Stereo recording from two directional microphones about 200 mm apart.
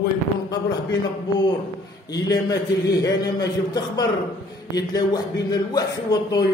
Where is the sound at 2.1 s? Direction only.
20° left (ahead or behind).